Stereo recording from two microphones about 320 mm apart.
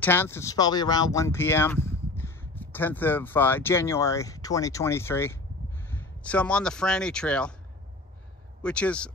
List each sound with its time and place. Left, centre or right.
0.0 s speech: centre
8.6 s speech: centre